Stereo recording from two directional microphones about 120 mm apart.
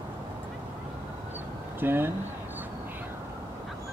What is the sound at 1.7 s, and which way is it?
Speech, 20° right (ahead or behind).